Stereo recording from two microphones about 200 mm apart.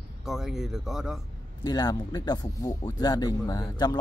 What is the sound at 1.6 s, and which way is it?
Speech, 20° left (ahead or behind).